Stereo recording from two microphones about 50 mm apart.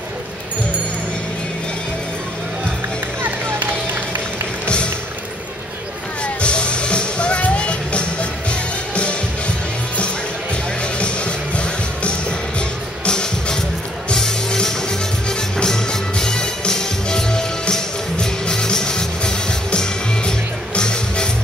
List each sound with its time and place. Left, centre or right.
4.6 s music: left
6.2 s music: left
10.5 s music: left